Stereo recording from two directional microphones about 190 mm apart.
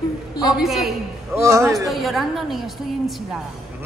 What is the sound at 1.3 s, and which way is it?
Speech, 15° right (ahead or behind).